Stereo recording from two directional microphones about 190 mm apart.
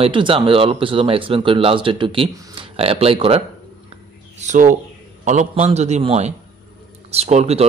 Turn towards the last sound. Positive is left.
turn(degrees=-35)  # may be behind; listen again after turning